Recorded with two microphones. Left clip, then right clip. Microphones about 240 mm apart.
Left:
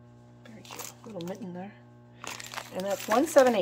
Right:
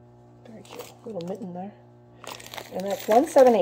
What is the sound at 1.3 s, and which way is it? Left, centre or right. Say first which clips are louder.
Speech: right 5 dB; centre.